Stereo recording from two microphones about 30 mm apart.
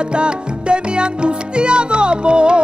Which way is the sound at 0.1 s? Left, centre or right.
Right.